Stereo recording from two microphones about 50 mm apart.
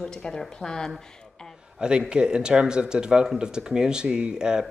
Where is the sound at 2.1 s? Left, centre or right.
Centre.